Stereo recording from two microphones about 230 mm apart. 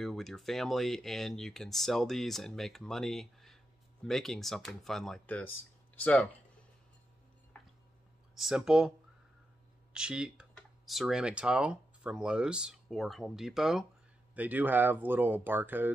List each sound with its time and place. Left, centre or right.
0.0 s speech: centre
7.5 s squish: centre
8.4 s speech: centre
9.9 s speech: centre